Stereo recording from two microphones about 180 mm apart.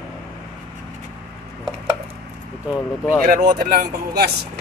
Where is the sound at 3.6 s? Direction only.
60° right (ahead or behind).